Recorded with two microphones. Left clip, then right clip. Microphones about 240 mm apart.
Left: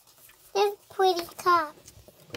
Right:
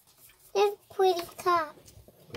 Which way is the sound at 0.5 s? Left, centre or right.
Centre.